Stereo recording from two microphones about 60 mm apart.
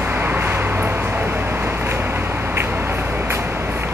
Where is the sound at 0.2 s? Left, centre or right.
Right.